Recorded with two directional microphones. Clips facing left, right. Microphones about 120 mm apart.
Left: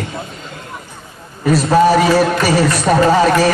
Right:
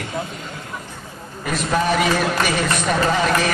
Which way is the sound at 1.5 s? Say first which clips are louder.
Left 9 dB; 35° left (ahead or behind).